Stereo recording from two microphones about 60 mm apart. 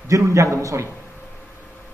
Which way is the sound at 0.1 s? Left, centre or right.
Right.